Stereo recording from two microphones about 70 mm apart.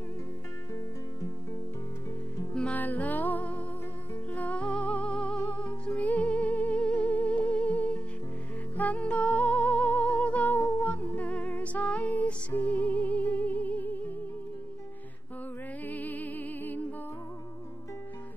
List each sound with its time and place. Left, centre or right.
2.7 s music: left
15.9 s music: left